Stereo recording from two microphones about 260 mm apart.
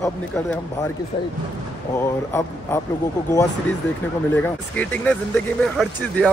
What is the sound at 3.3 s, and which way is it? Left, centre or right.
Speech, centre.